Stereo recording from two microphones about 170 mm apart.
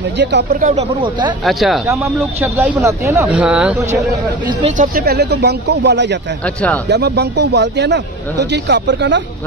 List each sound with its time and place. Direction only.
0.2 s speech: 85° right
0.6 s speech: 45° right (ahead or behind)
1.4 s speech: centre (ahead or behind)
2.4 s speech: 10° right (ahead or behind)
4.6 s speech: 35° right (ahead or behind)
4.9 s speech: 70° right (ahead or behind); by 6.1 s 90° right
6.9 s a man's voice: 80° right